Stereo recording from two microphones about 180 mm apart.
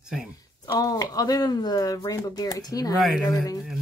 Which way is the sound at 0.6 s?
20° left (ahead or behind).